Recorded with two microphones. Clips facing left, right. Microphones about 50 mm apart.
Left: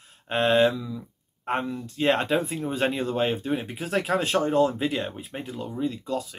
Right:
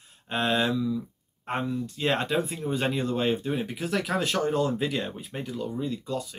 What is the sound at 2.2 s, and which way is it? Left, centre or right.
Speech, left.